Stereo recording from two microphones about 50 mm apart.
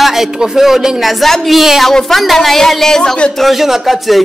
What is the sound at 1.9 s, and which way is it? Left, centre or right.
Speech, centre.